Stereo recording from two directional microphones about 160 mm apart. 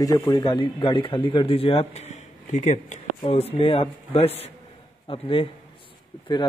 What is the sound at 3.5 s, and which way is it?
A man's voice, 35° left (ahead or behind).